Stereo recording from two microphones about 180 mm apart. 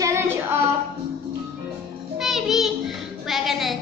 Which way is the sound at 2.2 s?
Centre (ahead or behind).